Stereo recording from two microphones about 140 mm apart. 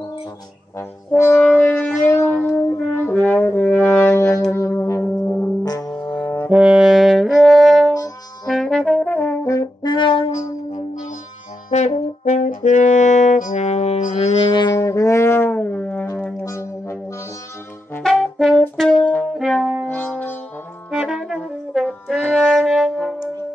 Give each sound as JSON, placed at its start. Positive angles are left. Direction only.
{"t": 0.7, "sound": "brass instrument", "side_deg": 20}
{"t": 4.5, "sound": "music", "side_deg": 20}
{"t": 6.5, "sound": "brass instrument", "side_deg": -5}
{"t": 10.3, "sound": "music", "side_deg": 60}
{"t": 11.7, "sound": "brass instrument", "side_deg": 55}
{"t": 14.5, "sound": "brass instrument", "side_deg": 30}
{"t": 16.4, "sound": "music", "side_deg": 20}
{"t": 18.0, "sound": "brass instrument", "side_deg": 0}
{"t": 19.9, "sound": "music", "side_deg": 15}
{"t": 20.9, "sound": "brass instrument", "side_deg": -5}